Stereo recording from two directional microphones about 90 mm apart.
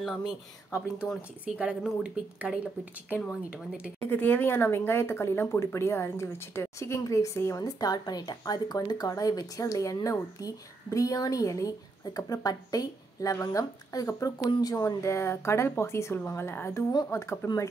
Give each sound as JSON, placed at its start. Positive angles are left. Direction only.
{"t": 1.4, "sound": "speech", "side_deg": -10}
{"t": 1.8, "sound": "speech", "side_deg": 0}
{"t": 2.3, "sound": "speech", "side_deg": -10}
{"t": 4.0, "sound": "speech", "side_deg": 20}
{"t": 7.6, "sound": "speech", "side_deg": 45}